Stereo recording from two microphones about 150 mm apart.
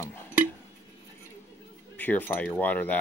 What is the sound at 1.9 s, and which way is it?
Speech, 10° left (ahead or behind).